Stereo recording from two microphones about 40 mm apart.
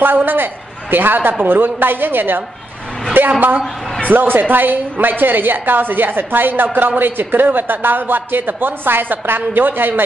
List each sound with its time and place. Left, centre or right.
0.0 s a man's voice: right
3.3 s a woman's voice: right